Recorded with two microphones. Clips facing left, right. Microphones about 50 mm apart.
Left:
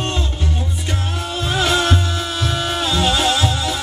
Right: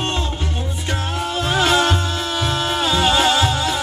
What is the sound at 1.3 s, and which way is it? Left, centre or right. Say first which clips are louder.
Music: right 1 dB; centre.